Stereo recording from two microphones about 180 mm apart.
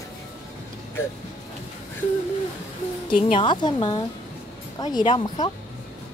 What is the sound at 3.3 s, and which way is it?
A woman's voice, 25° left (ahead or behind).